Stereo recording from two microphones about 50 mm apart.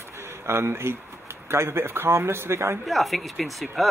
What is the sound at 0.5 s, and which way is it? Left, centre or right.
A man's voice, right.